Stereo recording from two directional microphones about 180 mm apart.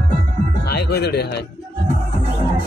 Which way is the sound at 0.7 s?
60° left (ahead or behind).